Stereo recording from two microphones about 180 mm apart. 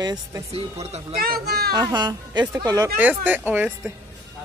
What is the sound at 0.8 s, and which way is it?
Speech, 35° right (ahead or behind).